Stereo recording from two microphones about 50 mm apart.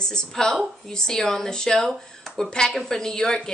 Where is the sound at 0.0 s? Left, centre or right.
Centre.